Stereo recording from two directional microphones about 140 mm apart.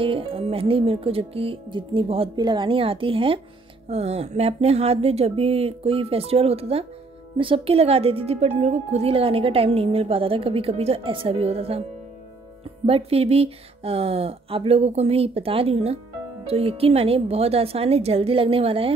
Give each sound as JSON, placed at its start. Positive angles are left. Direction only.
{"t": 0.0, "sound": "speech", "side_deg": -40}
{"t": 12.8, "sound": "speech", "side_deg": -45}